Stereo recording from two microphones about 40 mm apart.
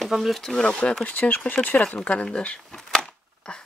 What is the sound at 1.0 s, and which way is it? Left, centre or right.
Speech, left.